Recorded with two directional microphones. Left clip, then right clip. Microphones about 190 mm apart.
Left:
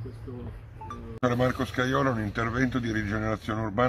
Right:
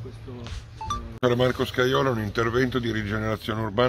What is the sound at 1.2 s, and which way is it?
A man's voice, 50° right (ahead or behind).